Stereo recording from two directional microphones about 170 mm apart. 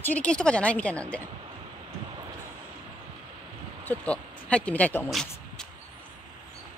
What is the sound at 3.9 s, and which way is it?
Speech, 5° left (ahead or behind).